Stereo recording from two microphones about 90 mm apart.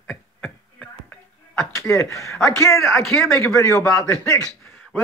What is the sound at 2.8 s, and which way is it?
Speech, centre (ahead or behind).